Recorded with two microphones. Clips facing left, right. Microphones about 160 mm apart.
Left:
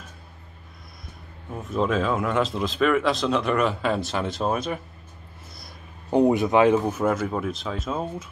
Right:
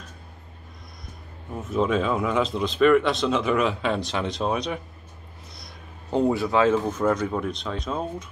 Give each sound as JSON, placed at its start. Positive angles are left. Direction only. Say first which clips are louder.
{"t": 1.5, "sound": "speech", "louder": "right 1 dB", "side_deg": 0}
{"t": 6.0, "sound": "speech", "louder": "left 3 dB", "side_deg": 15}